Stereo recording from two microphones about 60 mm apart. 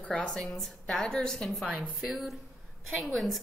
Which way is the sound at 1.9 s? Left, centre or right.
Centre.